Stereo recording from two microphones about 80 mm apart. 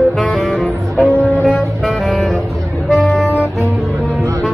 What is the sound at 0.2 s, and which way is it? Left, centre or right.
Saxophone, centre.